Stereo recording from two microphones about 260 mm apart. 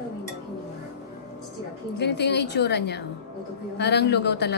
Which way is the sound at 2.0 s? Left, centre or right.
Left.